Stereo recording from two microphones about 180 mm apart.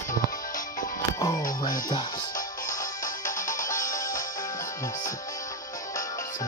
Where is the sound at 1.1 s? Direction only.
20° left (ahead or behind).